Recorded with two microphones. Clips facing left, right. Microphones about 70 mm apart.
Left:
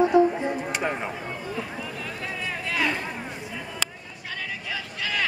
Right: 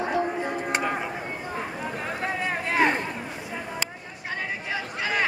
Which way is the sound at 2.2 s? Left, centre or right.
Right.